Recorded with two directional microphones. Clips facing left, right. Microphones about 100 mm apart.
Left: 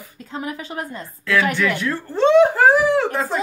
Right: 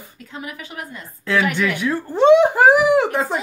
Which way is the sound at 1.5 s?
15° right (ahead or behind).